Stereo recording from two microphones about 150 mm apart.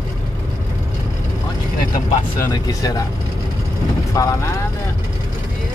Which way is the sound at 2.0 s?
30° left (ahead or behind).